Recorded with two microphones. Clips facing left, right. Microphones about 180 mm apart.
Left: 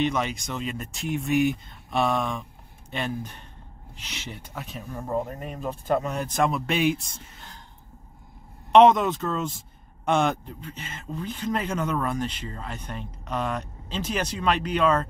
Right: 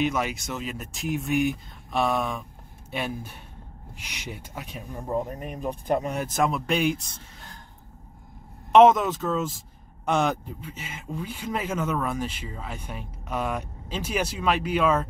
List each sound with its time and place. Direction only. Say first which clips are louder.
0.0 s speech: even; 5° right (ahead or behind)
8.7 s speech: even; 5° right (ahead or behind)